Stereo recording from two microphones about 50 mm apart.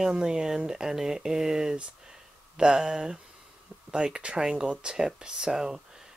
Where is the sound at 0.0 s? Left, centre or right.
Centre.